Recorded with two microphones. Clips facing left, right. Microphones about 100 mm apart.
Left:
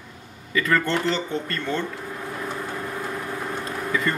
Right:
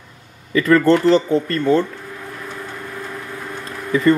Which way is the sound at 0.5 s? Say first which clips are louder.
Right 9 dB; 40° right (ahead or behind).